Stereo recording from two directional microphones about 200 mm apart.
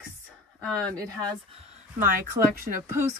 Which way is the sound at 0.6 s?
5° left (ahead or behind).